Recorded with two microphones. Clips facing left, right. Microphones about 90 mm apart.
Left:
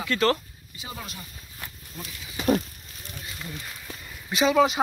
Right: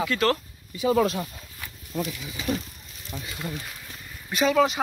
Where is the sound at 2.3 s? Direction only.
55° left (ahead or behind).